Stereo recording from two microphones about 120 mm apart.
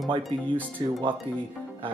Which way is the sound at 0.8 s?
45° right (ahead or behind).